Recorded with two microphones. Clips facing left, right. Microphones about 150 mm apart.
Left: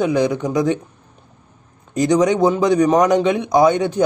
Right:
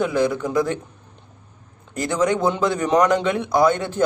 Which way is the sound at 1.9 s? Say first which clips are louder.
Left 5 dB; 15° left (ahead or behind).